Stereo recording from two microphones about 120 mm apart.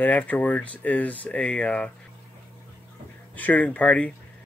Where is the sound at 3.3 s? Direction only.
15° left (ahead or behind).